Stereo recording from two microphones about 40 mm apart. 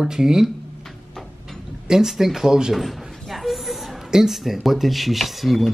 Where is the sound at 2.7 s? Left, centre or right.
Centre.